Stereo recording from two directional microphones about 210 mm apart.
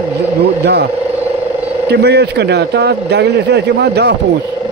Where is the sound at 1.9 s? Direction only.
50° right (ahead or behind).